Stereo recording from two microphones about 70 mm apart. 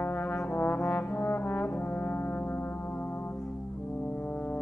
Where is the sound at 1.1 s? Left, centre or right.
Left.